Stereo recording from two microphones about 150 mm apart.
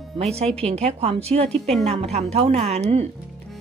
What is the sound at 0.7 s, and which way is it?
A woman's voice, 45° right (ahead or behind).